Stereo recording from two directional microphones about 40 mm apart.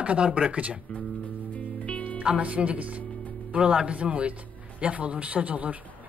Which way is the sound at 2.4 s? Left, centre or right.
Right.